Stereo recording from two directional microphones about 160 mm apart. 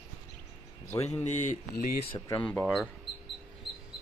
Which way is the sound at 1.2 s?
50° left (ahead or behind).